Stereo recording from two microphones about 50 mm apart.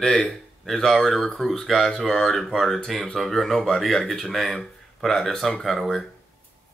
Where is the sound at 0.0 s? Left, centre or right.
Centre.